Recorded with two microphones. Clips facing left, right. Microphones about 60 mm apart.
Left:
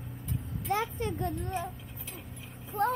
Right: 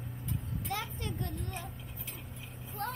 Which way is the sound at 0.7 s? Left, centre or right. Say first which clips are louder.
Left 8 dB; left.